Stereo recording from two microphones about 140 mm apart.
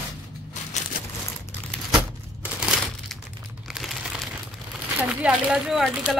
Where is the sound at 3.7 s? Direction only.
Centre (ahead or behind).